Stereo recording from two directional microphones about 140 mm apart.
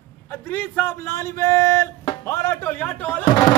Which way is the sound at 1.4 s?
20° left (ahead or behind).